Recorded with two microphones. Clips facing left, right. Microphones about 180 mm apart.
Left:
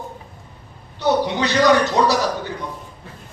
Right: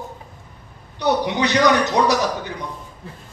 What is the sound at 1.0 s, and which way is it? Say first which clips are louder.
A man's voice: left 1 dB; 15° right (ahead or behind).